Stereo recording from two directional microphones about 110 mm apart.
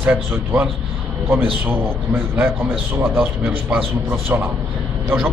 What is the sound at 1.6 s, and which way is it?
A man's voice, 20° right (ahead or behind).